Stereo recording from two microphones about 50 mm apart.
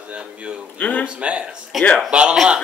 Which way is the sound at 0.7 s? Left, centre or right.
Left.